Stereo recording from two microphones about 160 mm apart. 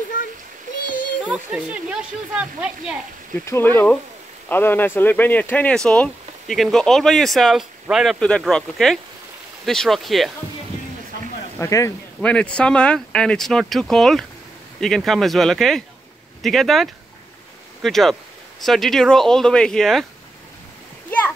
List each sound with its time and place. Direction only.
1.2 s speech: 5° right (ahead or behind)
3.3 s speech: 15° left (ahead or behind)
11.5 s speech: 20° left (ahead or behind)
12.2 s speech: 10° left (ahead or behind)